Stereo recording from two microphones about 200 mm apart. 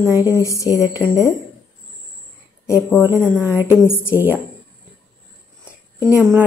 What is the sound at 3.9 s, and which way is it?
Speech, 10° left (ahead or behind).